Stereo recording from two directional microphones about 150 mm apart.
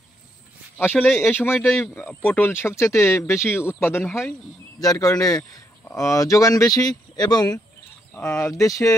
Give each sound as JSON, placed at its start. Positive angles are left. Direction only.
{"t": 0.7, "sound": "speech", "side_deg": 10}
{"t": 8.1, "sound": "speech", "side_deg": 10}
{"t": 8.5, "sound": "speech", "side_deg": 20}